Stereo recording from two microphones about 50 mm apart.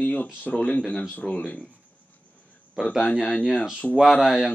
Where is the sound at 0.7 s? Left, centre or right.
Left.